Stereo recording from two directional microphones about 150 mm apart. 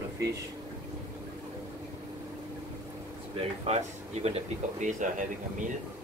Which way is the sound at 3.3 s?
40° right (ahead or behind).